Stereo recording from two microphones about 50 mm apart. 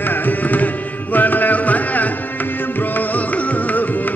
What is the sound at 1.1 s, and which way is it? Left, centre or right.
Music, left.